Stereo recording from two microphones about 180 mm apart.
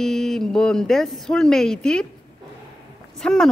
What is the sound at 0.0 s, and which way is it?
Speech, centre (ahead or behind).